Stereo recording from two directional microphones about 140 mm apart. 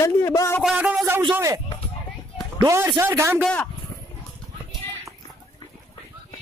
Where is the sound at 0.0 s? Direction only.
25° left (ahead or behind).